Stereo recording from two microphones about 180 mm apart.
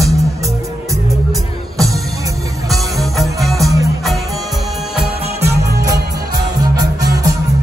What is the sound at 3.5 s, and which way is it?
Music, 20° right (ahead or behind).